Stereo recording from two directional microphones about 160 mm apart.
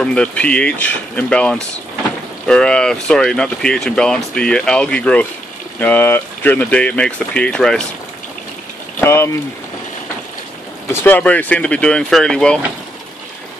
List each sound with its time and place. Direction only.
0.0 s speech: 5° left (ahead or behind)
9.0 s speech: 15° left (ahead or behind)
10.9 s speech: 15° left (ahead or behind)